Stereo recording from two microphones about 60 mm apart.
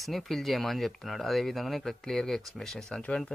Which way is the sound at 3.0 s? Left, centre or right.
Centre.